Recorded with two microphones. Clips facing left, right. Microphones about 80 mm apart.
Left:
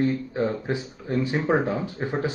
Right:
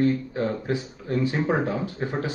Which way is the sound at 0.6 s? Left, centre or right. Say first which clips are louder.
Right 1 dB; left.